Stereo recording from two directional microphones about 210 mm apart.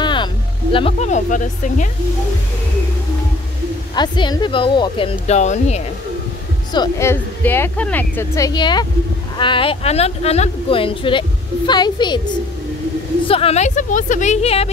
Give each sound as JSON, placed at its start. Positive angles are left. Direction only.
{"t": 0.0, "sound": "music", "side_deg": 20}
{"t": 0.7, "sound": "a woman's voice", "side_deg": 30}
{"t": 3.9, "sound": "speech", "side_deg": 20}
{"t": 6.7, "sound": "a woman's voice", "side_deg": 15}
{"t": 13.3, "sound": "a woman's voice", "side_deg": 30}